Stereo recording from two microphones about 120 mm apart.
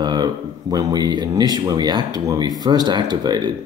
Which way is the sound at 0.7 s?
35° right (ahead or behind).